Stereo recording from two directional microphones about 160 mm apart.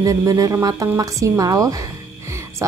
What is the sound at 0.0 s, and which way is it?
Speech, 20° right (ahead or behind).